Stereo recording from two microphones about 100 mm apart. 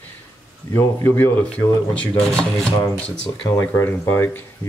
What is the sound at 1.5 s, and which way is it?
Speech, 10° left (ahead or behind).